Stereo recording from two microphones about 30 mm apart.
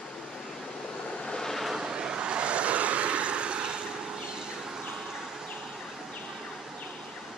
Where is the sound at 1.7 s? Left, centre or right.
Right.